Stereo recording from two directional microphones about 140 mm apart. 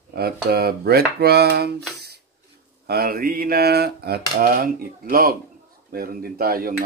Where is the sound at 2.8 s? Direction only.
90° right.